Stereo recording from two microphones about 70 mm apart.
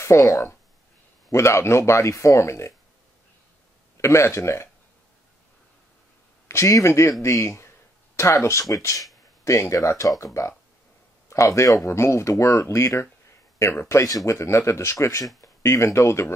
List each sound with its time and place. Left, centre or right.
0.0 s speech: left
1.3 s speech: left
4.0 s speech: left
6.4 s speech: left
14.0 s speech: left